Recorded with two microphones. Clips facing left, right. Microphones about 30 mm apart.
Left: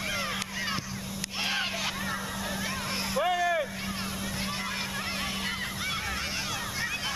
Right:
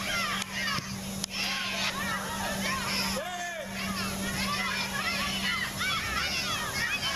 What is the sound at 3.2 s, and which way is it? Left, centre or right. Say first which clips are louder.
Vehicle: left 9 dB; left.